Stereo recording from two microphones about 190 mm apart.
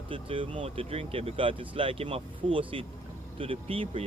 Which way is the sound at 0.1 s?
25° right (ahead or behind).